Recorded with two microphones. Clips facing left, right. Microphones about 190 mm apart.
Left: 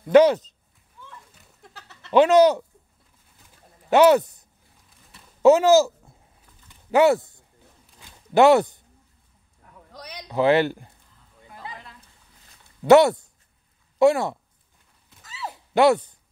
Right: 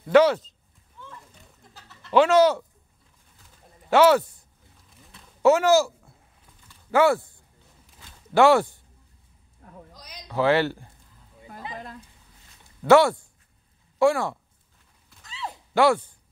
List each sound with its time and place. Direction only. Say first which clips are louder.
0.1 s speech: left 3 dB; 20° left (ahead or behind)
1.7 s goat: left 4 dB; 80° left
2.1 s speech: left 2 dB; 20° left (ahead or behind)
3.9 s a man's voice: left 2 dB; 20° left (ahead or behind)
6.7 s typing: left 2 dB; 20° left (ahead or behind)
8.0 s a sound: left 2 dB; 20° left (ahead or behind)
9.9 s a sound: left 7 dB; 65° left (ahead or behind)
10.2 s speech: left 2 dB; 20° left (ahead or behind)
12.8 s speech: left 3 dB; 20° left (ahead or behind)
15.2 s horse: left 1 dB; 5° left (ahead or behind)
15.7 s speech: left 3 dB; 20° left (ahead or behind)